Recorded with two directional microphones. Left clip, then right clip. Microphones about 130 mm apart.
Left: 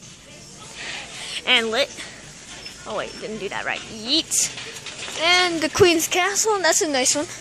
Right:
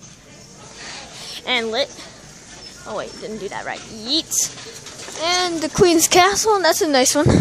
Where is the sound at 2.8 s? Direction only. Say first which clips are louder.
Right 1 dB; centre (ahead or behind).